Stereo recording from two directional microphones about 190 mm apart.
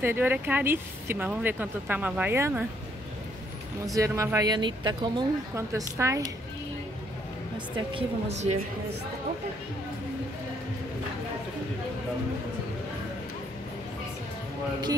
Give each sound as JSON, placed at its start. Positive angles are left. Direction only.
{"t": 0.0, "sound": "speech", "side_deg": -10}
{"t": 3.8, "sound": "speech", "side_deg": -15}
{"t": 7.5, "sound": "speech", "side_deg": -25}